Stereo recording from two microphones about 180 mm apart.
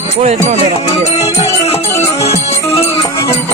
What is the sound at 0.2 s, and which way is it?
Music, 40° right (ahead or behind).